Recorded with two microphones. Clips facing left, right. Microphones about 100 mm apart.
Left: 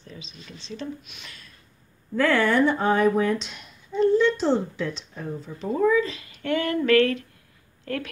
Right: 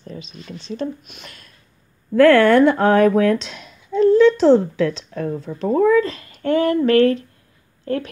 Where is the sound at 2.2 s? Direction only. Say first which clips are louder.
Right 9 dB; 70° right (ahead or behind).